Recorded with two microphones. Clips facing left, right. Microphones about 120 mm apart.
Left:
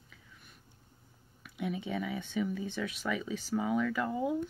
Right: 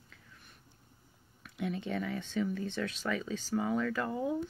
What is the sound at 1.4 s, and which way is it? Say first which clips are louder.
Speech: even; 5° left (ahead or behind).